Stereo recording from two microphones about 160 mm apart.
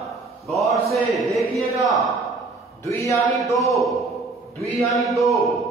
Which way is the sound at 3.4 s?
20° left (ahead or behind).